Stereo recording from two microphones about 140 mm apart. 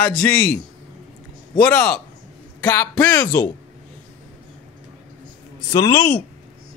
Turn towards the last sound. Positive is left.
turn(degrees=25)  # may be behind; listen again after turning